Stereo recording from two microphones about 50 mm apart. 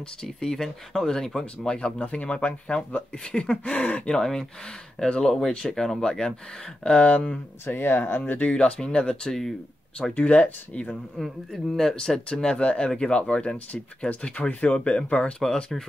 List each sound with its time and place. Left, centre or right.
0.2 s speech: centre
2.0 s speech: left
7.6 s speech: left
8.3 s speech: left; by 9.5 s centre
10.1 s speech: left
11.5 s speech: centre
15.4 s speech: centre